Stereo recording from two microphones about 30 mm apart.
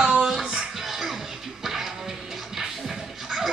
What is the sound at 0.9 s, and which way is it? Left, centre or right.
Music, centre.